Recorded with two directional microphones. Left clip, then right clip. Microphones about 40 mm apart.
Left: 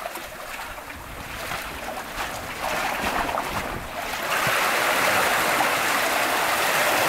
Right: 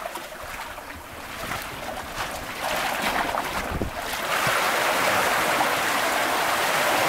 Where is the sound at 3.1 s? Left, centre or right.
Centre.